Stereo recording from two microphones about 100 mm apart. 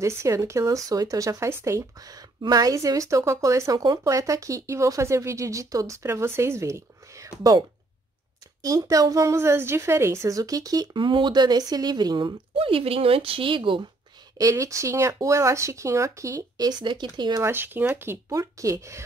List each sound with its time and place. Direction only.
0.0 s a woman's voice: 30° right (ahead or behind)
8.6 s a woman's voice: 35° right (ahead or behind)
12.5 s speech: 70° right (ahead or behind)
14.4 s a woman's voice: 35° right (ahead or behind); by 17.4 s 50° right (ahead or behind)
17.4 s speech: 20° right (ahead or behind)
18.3 s a woman's voice: 35° right (ahead or behind)